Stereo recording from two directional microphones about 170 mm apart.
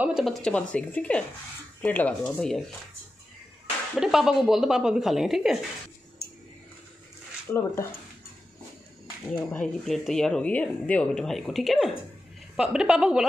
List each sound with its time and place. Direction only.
0.0 s speech: centre (ahead or behind)
3.9 s speech: centre (ahead or behind)
6.2 s a sound: 65° left (ahead or behind)
7.5 s speech: 15° left (ahead or behind)
9.5 s speech: 5° left (ahead or behind)